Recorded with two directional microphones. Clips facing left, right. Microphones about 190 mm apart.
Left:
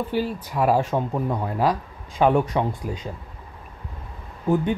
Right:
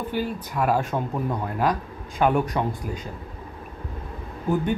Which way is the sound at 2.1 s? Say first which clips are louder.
Left 2 dB; 25° left (ahead or behind).